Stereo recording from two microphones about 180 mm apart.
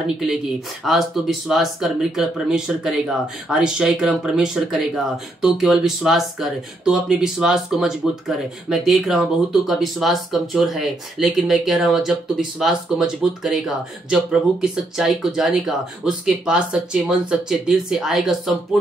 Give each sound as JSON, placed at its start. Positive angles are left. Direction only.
{"t": 0.8, "sound": "speech", "side_deg": 0}